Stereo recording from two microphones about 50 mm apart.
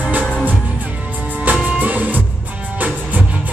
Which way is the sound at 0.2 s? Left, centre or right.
Centre.